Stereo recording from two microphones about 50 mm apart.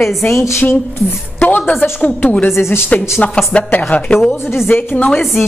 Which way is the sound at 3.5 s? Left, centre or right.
Left.